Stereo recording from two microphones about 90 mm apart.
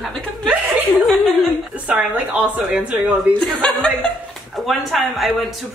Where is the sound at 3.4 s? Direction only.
10° left (ahead or behind).